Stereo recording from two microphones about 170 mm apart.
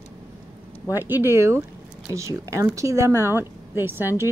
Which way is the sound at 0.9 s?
10° right (ahead or behind).